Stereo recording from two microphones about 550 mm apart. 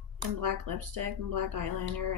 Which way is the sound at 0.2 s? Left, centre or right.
Right.